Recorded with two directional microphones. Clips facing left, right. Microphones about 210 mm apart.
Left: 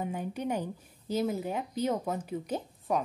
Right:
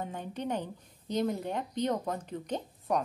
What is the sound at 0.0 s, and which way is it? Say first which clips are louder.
Speech: left 3 dB; 10° left (ahead or behind).